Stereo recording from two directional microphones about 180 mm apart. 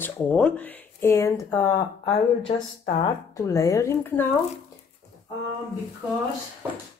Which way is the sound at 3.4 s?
20° left (ahead or behind).